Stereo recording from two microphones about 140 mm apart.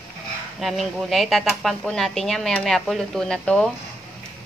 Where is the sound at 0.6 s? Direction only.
Centre (ahead or behind).